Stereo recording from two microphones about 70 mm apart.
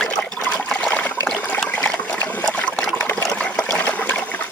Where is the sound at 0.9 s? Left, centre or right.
Centre.